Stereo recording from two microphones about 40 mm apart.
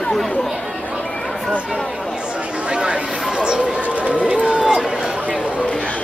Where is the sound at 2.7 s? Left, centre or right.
Right.